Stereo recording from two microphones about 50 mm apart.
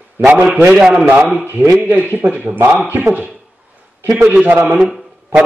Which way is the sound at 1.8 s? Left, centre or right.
Right.